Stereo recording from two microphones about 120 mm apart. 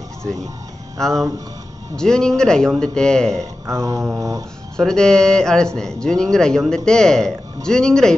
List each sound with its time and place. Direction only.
0.9 s speech: 5° left (ahead or behind)
3.6 s mantra: 25° right (ahead or behind)
4.7 s speech: 5° left (ahead or behind)